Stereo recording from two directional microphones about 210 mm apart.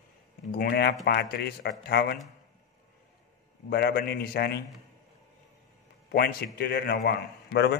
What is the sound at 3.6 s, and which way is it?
Speech, 50° left (ahead or behind).